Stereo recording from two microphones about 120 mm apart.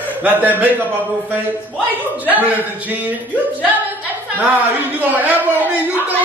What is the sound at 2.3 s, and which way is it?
A man's voice, 15° right (ahead or behind).